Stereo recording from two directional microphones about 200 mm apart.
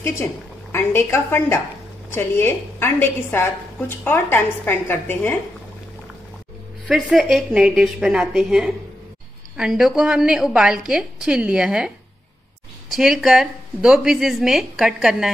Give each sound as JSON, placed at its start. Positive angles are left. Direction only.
{"t": 0.0, "sound": "a woman's voice", "side_deg": 10}
{"t": 6.9, "sound": "a woman's voice", "side_deg": 0}
{"t": 12.9, "sound": "a woman's voice", "side_deg": 0}